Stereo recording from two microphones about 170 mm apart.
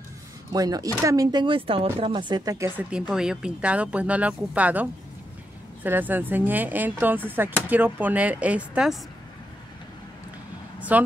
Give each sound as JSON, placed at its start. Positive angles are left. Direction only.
{"t": 0.5, "sound": "speech", "side_deg": -20}
{"t": 2.9, "sound": "speech", "side_deg": -5}
{"t": 5.9, "sound": "speech", "side_deg": -10}
{"t": 10.8, "sound": "a sound", "side_deg": -10}